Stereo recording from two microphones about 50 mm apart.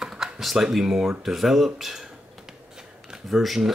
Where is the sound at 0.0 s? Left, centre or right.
Centre.